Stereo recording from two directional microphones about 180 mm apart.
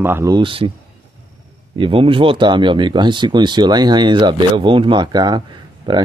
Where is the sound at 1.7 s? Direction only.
30° right (ahead or behind).